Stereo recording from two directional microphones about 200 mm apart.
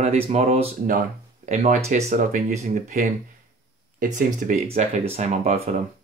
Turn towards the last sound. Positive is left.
turn(degrees=-35)  # may be behind; listen again after turning